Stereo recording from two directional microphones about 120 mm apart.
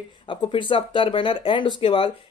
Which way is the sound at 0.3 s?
45° left (ahead or behind).